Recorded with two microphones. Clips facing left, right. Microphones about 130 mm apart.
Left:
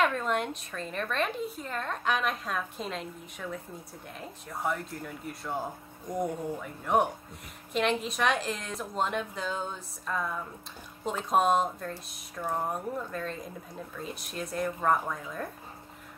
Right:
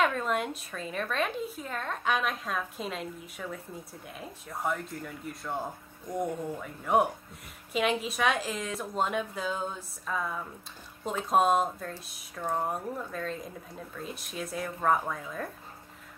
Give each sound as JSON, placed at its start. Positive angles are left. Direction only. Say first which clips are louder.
{"t": 0.0, "sound": "a woman's voice", "louder": "even", "side_deg": 0}